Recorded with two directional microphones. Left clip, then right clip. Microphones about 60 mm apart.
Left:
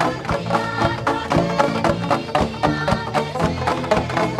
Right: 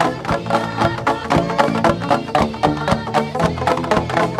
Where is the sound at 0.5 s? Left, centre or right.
Right.